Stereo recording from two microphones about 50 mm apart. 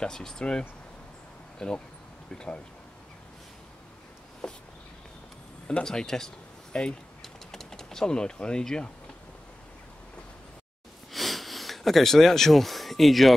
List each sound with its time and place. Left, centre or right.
0.0 s speech: centre
4.4 s a sound: centre
5.7 s speech: centre
7.2 s typing: centre
11.1 s sniff: centre